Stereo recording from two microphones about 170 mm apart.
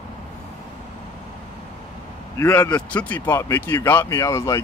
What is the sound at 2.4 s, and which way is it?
Speech, 15° left (ahead or behind).